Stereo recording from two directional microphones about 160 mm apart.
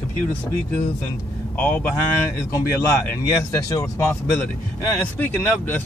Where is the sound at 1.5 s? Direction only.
10° left (ahead or behind).